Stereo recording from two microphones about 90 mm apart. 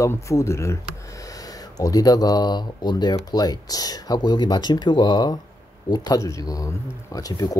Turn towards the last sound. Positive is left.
turn(degrees=45)  # may be behind; listen again after turning